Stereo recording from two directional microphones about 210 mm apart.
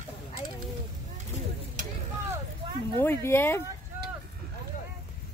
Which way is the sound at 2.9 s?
15° left (ahead or behind).